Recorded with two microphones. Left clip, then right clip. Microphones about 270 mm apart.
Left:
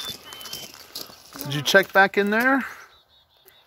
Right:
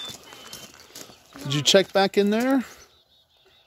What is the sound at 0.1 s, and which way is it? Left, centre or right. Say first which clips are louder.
Vehicle: left 5 dB; centre.